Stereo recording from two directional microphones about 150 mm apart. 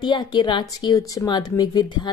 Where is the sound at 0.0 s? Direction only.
30° left (ahead or behind).